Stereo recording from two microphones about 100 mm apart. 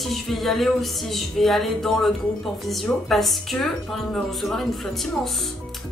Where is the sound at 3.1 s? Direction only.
Centre (ahead or behind).